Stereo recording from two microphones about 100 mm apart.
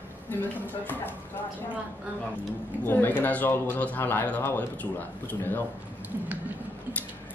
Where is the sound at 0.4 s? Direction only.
20° left (ahead or behind).